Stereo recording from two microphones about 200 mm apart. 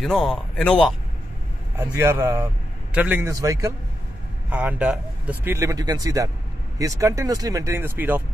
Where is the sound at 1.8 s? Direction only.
15° right (ahead or behind).